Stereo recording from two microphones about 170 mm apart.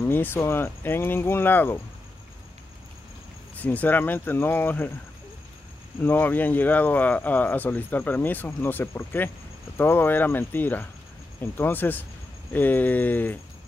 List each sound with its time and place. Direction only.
0.0 s speech: 10° left (ahead or behind)
3.5 s speech: 10° left (ahead or behind)
5.9 s speech: 10° left (ahead or behind)